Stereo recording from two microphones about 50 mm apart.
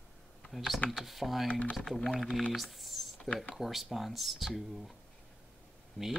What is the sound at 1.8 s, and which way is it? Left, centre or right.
Speech, centre.